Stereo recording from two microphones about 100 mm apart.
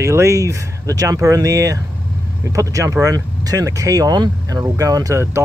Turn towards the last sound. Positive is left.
turn(degrees=-30)  # may be behind; listen again after turning